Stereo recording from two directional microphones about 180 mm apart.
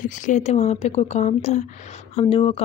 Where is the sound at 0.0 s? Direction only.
45° left (ahead or behind).